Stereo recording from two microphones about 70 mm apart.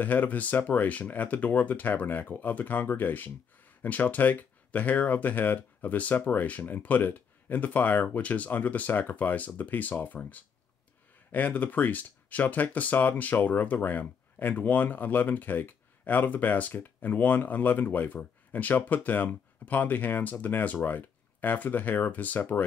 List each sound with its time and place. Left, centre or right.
0.0 s speech: left